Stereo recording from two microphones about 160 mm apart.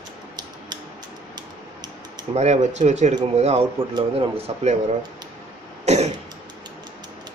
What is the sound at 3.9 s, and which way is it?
Speech, 35° right (ahead or behind).